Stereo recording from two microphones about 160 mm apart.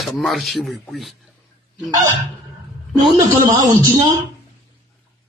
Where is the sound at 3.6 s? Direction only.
25° right (ahead or behind).